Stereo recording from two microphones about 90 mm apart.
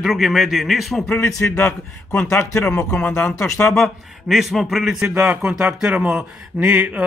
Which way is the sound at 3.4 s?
35° left (ahead or behind).